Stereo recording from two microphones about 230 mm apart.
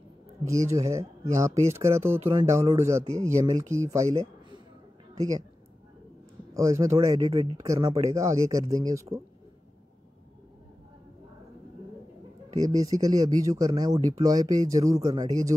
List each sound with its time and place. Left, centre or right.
0.5 s a woman's voice: centre
6.5 s speech: centre
12.5 s speech: centre